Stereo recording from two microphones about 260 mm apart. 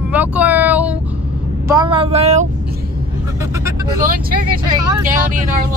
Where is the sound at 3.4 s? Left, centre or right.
Centre.